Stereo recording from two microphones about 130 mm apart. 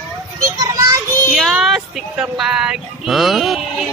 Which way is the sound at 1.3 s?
Centre (ahead or behind).